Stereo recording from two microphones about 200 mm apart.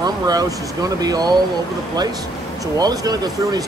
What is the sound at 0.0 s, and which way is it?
Speech, 20° right (ahead or behind).